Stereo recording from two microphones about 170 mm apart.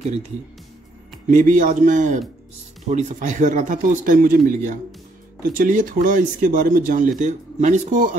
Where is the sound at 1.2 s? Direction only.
50° right (ahead or behind).